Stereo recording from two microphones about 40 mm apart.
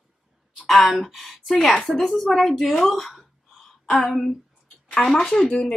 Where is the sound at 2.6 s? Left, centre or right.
Centre.